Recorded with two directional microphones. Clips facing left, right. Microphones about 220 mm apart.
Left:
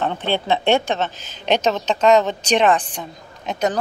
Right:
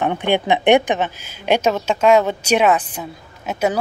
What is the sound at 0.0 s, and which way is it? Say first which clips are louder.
A woman's voice: right 4 dB; 15° right (ahead or behind).